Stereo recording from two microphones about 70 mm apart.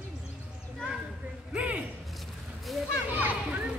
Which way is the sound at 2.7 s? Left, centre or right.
Centre.